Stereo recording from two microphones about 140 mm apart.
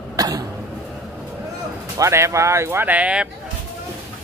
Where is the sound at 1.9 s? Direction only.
20° right (ahead or behind).